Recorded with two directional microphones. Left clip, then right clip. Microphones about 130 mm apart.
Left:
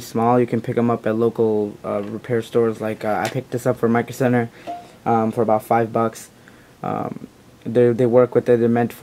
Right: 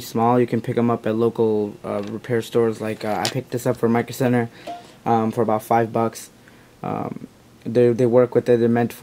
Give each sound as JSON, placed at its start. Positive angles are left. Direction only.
{"t": 0.0, "sound": "speech", "side_deg": -15}